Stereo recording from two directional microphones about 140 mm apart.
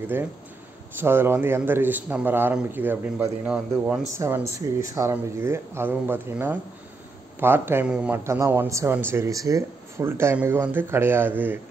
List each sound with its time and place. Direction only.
0.9 s speech: 15° right (ahead or behind)
4.2 s speech: 20° right (ahead or behind)
8.2 s speech: 20° right (ahead or behind)